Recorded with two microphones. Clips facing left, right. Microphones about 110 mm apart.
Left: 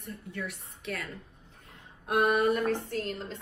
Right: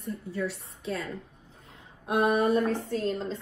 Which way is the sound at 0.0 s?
30° right (ahead or behind).